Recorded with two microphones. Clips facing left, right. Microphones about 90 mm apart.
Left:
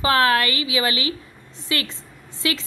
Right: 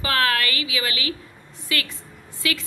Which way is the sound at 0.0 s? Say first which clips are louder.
Left 4 dB; 25° left (ahead or behind).